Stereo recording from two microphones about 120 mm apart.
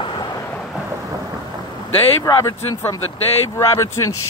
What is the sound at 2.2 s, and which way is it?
Speech, 25° left (ahead or behind).